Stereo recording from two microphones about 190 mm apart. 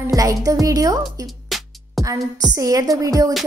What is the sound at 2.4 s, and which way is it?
Speech, 20° right (ahead or behind).